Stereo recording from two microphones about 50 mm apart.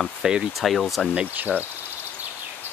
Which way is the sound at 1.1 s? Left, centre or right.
Right.